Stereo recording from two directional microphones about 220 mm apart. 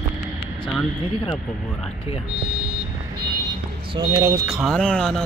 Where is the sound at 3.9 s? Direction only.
15° right (ahead or behind).